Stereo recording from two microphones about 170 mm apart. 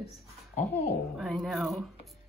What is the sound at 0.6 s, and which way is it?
Speech, 45° left (ahead or behind).